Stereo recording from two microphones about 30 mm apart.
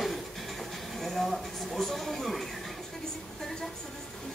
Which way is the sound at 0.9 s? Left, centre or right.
Centre.